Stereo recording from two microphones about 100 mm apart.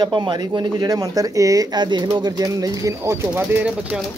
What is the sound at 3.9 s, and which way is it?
Speech, 10° right (ahead or behind).